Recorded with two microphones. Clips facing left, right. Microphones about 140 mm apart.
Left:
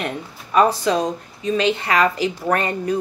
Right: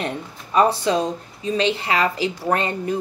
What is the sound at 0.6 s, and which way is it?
A woman's voice, 30° right (ahead or behind).